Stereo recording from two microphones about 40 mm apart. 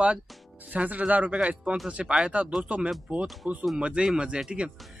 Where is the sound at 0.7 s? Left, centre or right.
Right.